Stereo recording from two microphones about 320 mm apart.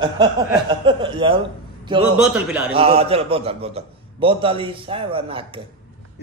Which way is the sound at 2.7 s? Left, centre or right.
Centre.